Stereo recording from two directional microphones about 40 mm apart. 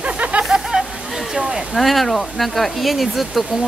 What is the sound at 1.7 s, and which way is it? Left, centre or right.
Speech, centre.